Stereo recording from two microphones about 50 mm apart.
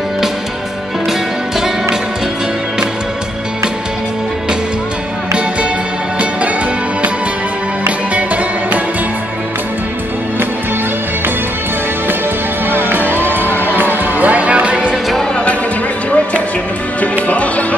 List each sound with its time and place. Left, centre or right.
12.6 s music: right
17.3 s music: left